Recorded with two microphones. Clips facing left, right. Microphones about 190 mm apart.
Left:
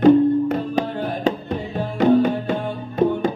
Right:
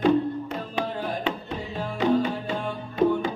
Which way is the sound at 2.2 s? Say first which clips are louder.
Left 7 dB; 55° left (ahead or behind).